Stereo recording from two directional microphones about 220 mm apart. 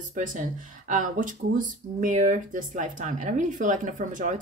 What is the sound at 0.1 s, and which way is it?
Speech, 35° right (ahead or behind).